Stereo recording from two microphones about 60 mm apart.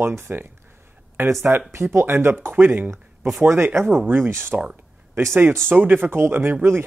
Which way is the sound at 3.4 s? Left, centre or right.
Right.